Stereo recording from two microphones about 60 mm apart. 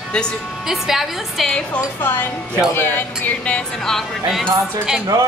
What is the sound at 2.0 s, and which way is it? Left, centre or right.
Music, left.